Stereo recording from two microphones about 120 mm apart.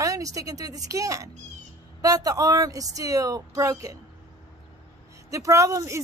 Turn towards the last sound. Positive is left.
turn(degrees=-25)  # may be behind; listen again after turning